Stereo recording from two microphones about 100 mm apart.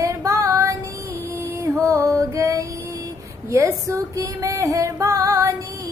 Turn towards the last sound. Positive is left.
turn(degrees=-35)  # may be behind; listen again after turning